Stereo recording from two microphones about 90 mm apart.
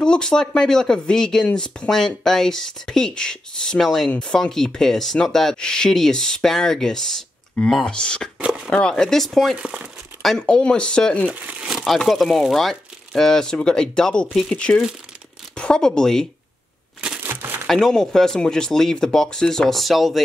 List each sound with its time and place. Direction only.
0.0 s speech: 10° left (ahead or behind)
8.4 s speech: 10° right (ahead or behind)
8.6 s speech: 10° left (ahead or behind)
9.6 s speech: 15° right (ahead or behind)
10.2 s speech: 10° left (ahead or behind)
11.2 s speech: 15° right (ahead or behind)
11.7 s speech: centre (ahead or behind)
17.2 s crumpling: 25° right (ahead or behind)
17.6 s speech: 5° left (ahead or behind)